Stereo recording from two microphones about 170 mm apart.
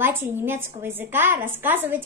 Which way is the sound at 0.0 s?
10° right (ahead or behind).